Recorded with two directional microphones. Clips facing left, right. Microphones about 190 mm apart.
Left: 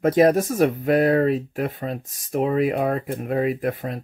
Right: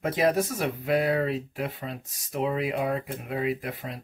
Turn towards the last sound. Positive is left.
turn(degrees=50)  # may be behind; listen again after turning